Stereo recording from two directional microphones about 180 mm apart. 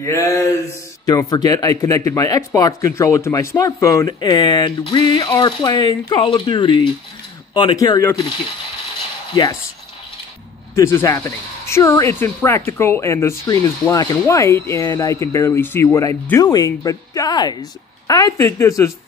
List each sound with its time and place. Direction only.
0.0 s a sound: 20° left (ahead or behind)
1.0 s speech: 20° left (ahead or behind)
9.3 s speech: 25° left (ahead or behind)
10.7 s speech: 15° left (ahead or behind)